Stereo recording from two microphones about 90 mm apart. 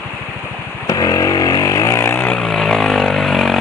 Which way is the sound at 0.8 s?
45° left (ahead or behind).